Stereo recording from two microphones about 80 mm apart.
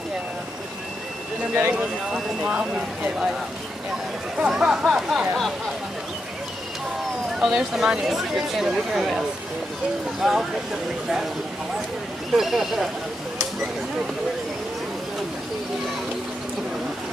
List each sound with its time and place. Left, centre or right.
1.5 s speech: centre
4.4 s speech: centre
7.3 s speech: centre
10.2 s speech: centre
12.3 s speech: centre